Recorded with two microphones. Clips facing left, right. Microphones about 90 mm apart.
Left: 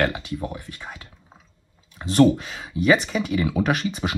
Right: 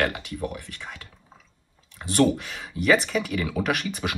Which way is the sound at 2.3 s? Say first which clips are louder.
Left 4 dB; 20° left (ahead or behind).